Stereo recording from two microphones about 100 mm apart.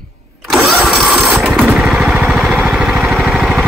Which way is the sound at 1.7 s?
5° right (ahead or behind).